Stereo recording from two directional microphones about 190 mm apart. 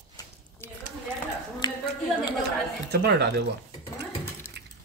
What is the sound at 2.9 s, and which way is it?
Speech, 60° right (ahead or behind).